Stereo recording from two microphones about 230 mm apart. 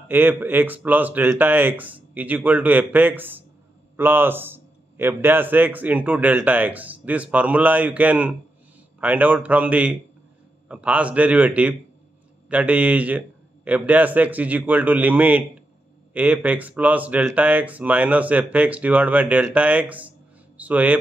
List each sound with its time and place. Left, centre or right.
0.1 s speech: centre